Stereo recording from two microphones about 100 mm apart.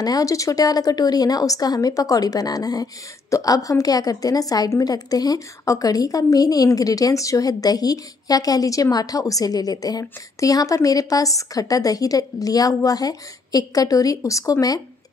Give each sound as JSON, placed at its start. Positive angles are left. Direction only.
{"t": 0.0, "sound": "a woman's voice", "side_deg": 35}